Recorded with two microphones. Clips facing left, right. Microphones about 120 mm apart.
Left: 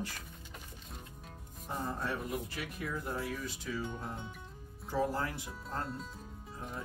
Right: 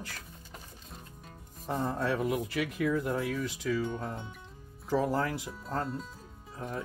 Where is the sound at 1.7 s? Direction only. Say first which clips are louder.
Right 6 dB; 90° right.